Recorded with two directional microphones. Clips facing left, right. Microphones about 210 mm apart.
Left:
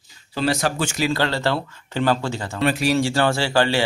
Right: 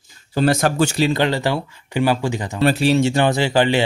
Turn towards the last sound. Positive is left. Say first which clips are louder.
# right 3 dB
turn(degrees=-20)  # may be behind; listen again after turning